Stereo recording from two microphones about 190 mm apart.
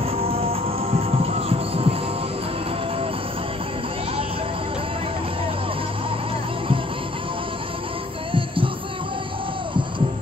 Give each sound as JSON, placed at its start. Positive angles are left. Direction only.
{"t": 0.0, "sound": "music", "side_deg": -30}
{"t": 8.3, "sound": "music", "side_deg": -25}